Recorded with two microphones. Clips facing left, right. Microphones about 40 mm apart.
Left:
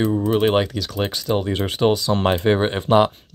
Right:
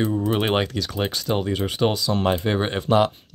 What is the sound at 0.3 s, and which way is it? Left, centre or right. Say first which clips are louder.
Speech: left 4 dB; centre.